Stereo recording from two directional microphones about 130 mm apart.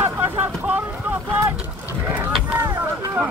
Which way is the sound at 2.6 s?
30° right (ahead or behind).